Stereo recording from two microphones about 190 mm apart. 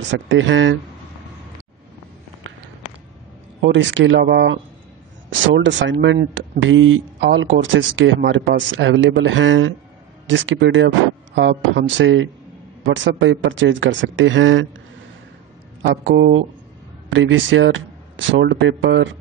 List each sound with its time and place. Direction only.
0.1 s speech: 80° right
3.6 s speech: 75° right (ahead or behind)
5.3 s speech: 75° right (ahead or behind)
6.7 s speech: 90° right
15.8 s speech: 70° right (ahead or behind)
17.1 s speech: 85° right